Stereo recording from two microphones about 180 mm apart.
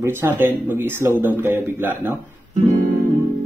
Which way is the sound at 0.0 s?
10° right (ahead or behind).